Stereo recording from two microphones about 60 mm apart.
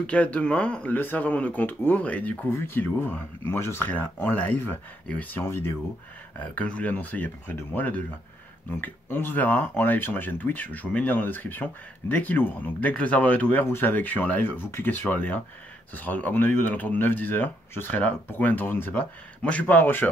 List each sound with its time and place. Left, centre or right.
0.0 s speech: left
0.9 s speech: left
2.5 s speech: left
3.4 s speech: left
3.9 s speech: left
5.3 s speech: left
6.3 s speech: left